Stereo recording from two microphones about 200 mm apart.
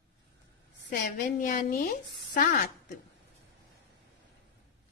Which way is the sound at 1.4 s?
40° left (ahead or behind).